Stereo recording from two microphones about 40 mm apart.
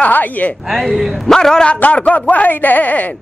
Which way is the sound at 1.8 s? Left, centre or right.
Left.